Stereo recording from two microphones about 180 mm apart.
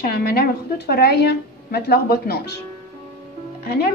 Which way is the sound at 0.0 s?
55° left (ahead or behind).